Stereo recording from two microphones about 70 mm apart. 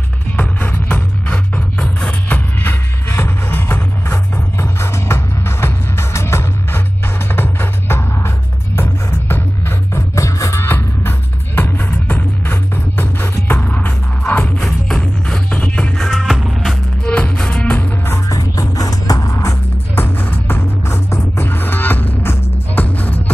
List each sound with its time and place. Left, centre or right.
0.4 s music: left
9.3 s a sound: left
10.1 s music: left
10.7 s music: left
13.6 s music: centre
14.6 s music: centre
16.0 s music: centre
17.0 s music: centre
17.7 s music: left
18.3 s music: left
20.0 s music: left